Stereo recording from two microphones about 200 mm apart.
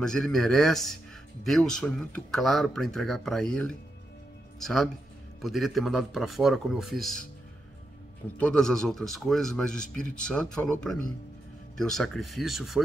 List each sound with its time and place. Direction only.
0.0 s speech: 5° left (ahead or behind)
8.4 s speech: 5° left (ahead or behind)